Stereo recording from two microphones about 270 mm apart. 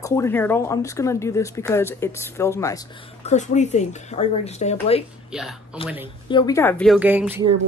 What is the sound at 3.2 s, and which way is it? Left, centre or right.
Speech, left.